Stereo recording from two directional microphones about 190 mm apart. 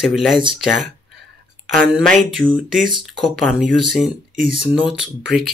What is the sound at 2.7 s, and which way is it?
Speech, centre (ahead or behind).